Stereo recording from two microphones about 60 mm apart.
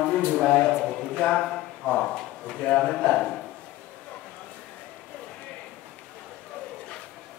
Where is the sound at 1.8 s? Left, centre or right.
Centre.